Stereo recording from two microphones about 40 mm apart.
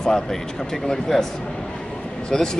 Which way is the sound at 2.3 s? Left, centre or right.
Centre.